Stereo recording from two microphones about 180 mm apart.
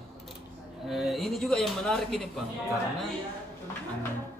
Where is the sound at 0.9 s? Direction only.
Centre (ahead or behind).